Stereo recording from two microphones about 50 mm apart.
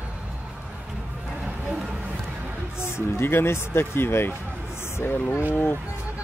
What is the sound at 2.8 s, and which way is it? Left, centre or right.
Speech, left.